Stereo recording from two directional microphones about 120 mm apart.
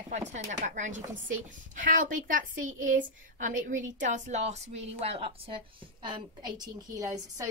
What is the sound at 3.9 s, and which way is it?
A woman's voice, 90° right.